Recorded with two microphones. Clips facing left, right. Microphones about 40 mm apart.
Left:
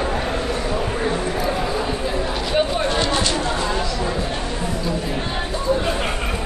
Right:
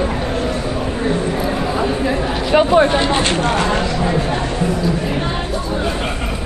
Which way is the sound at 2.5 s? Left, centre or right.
Right.